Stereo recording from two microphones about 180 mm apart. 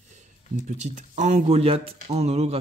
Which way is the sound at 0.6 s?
40° right (ahead or behind).